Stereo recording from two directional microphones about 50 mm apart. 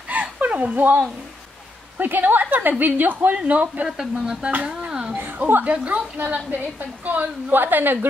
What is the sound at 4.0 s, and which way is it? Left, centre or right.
Speech, centre.